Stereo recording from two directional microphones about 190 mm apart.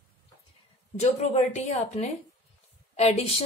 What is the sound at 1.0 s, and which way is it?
A woman's voice, 35° left (ahead or behind).